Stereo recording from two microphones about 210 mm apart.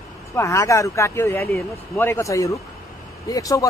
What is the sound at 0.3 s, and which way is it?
Speech, 15° left (ahead or behind).